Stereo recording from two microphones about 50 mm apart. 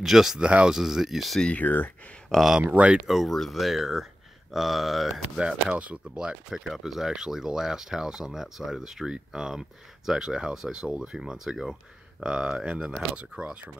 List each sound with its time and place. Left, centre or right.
0.0 s speech: centre
1.5 s speech: left
2.6 s speech: right
2.9 s speech: centre
5.4 s speech: right
6.1 s speech: centre
12.2 s speech: centre